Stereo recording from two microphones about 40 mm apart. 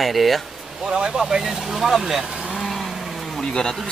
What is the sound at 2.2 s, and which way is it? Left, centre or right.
Sheep, centre.